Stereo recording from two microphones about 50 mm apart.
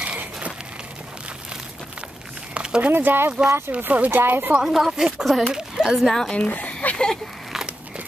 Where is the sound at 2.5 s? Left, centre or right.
Centre.